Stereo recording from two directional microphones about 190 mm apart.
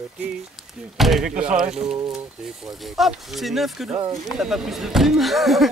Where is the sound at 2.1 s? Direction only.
Centre (ahead or behind).